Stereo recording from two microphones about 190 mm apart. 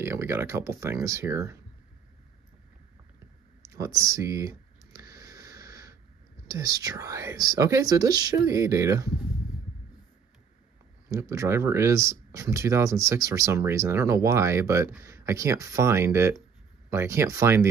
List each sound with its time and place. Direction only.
0.0 s speech: 15° right (ahead or behind)
3.6 s clicking: 15° right (ahead or behind)
6.4 s speech: 20° right (ahead or behind)
11.1 s speech: 15° right (ahead or behind)